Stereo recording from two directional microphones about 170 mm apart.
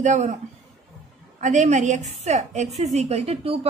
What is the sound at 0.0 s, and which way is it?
Speech, 45° right (ahead or behind).